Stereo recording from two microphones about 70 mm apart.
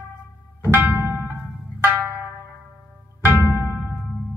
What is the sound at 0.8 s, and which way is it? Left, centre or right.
Music, right.